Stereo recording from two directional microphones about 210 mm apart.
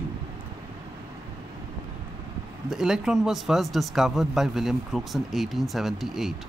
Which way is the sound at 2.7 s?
Centre (ahead or behind).